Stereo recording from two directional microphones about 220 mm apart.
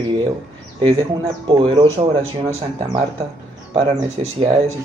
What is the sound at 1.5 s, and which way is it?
Speech, 25° right (ahead or behind).